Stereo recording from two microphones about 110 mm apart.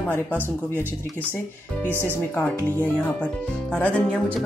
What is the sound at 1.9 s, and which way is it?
Speech, 20° right (ahead or behind).